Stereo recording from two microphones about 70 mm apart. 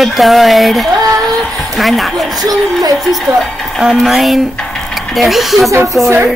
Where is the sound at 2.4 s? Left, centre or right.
Right.